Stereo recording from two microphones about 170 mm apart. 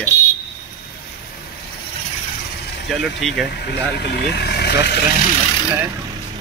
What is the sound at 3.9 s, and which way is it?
Speech, 75° left (ahead or behind).